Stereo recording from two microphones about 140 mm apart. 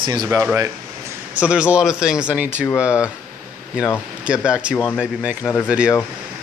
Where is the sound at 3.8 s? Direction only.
5° right (ahead or behind).